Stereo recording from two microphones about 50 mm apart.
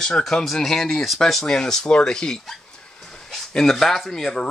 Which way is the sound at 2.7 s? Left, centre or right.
Centre.